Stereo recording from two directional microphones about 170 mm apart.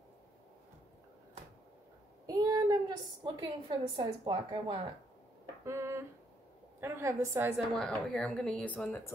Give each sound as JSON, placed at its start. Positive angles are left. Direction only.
{"t": 2.2, "sound": "a sound", "side_deg": -20}
{"t": 3.3, "sound": "a woman's voice", "side_deg": -30}
{"t": 5.7, "sound": "a woman's voice", "side_deg": -15}
{"t": 7.8, "sound": "speech", "side_deg": 5}